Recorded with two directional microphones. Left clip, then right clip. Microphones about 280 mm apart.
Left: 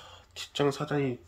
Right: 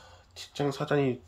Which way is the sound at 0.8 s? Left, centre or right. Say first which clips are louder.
Right 3 dB; centre.